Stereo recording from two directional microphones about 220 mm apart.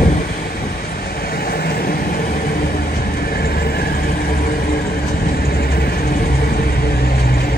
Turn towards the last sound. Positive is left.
turn(degrees=45)  # may be behind; listen again after turning